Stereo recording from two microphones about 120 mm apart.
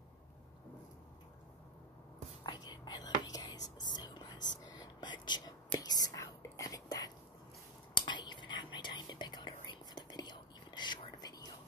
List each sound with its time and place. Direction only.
2.4 s whispering: 35° left (ahead or behind)
7.9 s whispering: 40° left (ahead or behind)